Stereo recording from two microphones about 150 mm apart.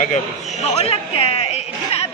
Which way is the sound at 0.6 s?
45° left (ahead or behind).